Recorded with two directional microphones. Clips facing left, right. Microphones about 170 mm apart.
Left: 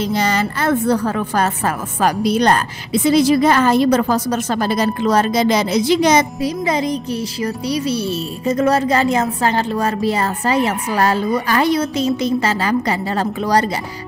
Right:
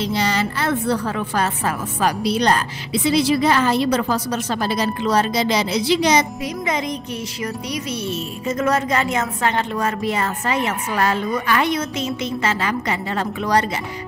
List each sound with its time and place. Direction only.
0.0 s a woman's voice: 50° left (ahead or behind)
6.4 s speech: 35° left (ahead or behind)